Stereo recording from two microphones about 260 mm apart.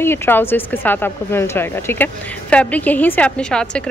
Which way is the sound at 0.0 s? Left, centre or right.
Centre.